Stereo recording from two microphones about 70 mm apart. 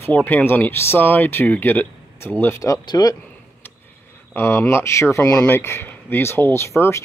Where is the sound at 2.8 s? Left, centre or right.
Left.